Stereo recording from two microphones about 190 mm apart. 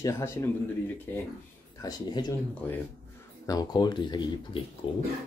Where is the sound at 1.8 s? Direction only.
20° left (ahead or behind).